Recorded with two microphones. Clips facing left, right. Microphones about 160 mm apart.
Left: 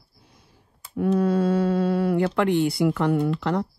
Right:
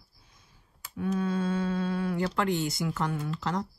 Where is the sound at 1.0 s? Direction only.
60° left (ahead or behind).